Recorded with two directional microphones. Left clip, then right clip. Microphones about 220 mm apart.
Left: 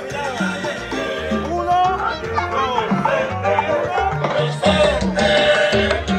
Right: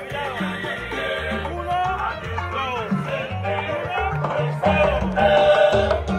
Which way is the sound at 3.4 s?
15° left (ahead or behind).